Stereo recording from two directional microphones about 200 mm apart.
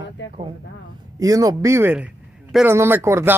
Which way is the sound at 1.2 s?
15° right (ahead or behind).